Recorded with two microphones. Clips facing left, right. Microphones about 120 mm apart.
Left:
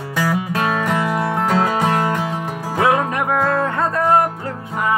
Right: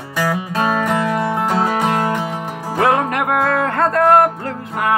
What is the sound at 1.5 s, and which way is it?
Music, 10° right (ahead or behind).